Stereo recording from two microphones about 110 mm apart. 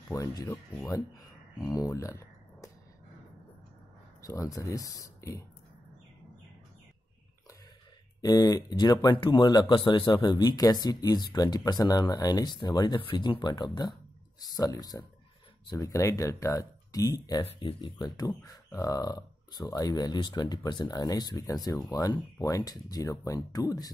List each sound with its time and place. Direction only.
0.1 s speech: 35° left (ahead or behind)
1.7 s speech: 30° left (ahead or behind)
4.2 s speech: 30° left (ahead or behind)
8.2 s speech: 35° left (ahead or behind)
17.6 s speech: 50° left (ahead or behind)
18.0 s speech: 35° left (ahead or behind)